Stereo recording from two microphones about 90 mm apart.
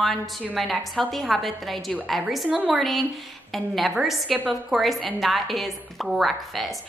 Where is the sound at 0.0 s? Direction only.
5° left (ahead or behind).